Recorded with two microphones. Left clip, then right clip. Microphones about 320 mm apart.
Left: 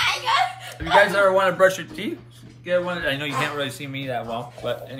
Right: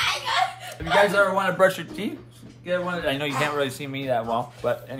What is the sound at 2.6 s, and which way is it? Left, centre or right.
Speech, centre.